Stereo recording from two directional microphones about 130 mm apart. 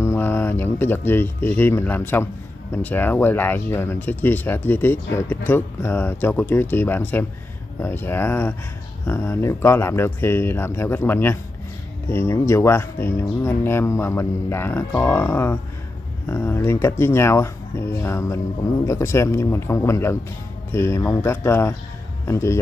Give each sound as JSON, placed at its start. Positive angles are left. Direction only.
{"t": 0.0, "sound": "speech", "side_deg": 20}